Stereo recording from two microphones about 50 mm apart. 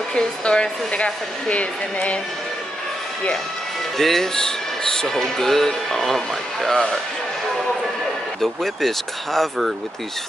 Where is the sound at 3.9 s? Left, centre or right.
Centre.